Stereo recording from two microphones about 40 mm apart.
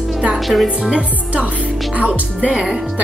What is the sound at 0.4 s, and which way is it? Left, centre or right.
Speech, centre.